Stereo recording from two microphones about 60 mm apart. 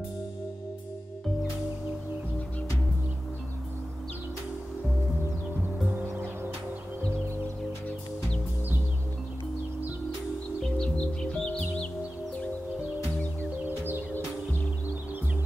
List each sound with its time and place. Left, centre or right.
10.6 s music: centre
13.7 s music: right